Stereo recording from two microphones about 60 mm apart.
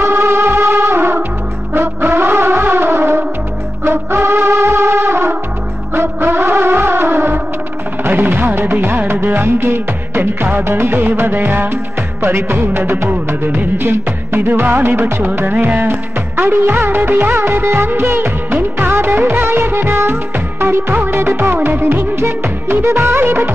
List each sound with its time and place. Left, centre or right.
0.0 s music: right
20.3 s music: right